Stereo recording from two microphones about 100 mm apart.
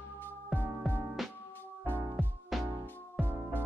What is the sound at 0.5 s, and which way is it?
Music, centre (ahead or behind).